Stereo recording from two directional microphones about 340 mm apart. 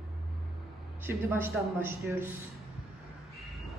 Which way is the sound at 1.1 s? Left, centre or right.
Centre.